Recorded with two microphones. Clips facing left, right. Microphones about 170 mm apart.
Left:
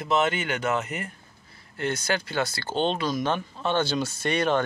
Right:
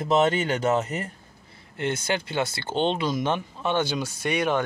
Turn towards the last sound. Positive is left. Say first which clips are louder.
# even
turn(degrees=-10)  # may be behind; listen again after turning